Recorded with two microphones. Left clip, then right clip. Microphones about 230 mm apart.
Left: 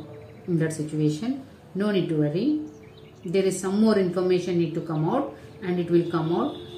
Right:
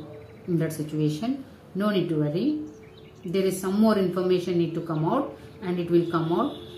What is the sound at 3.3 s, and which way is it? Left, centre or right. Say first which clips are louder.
Speech: left 2 dB; centre.